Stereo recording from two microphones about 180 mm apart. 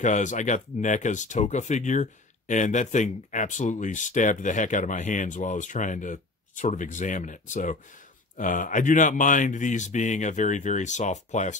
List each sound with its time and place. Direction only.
0.0 s speech: 45° left (ahead or behind)